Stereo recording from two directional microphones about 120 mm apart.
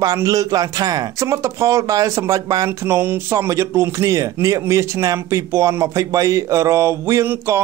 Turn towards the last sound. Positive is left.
turn(degrees=-25)  # may be behind; listen again after turning